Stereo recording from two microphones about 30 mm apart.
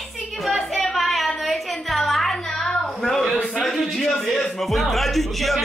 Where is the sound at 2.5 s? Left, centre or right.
Centre.